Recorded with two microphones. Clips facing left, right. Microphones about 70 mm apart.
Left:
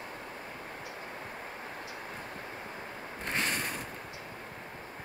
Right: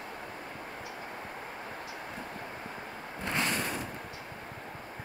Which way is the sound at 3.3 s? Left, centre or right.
Left.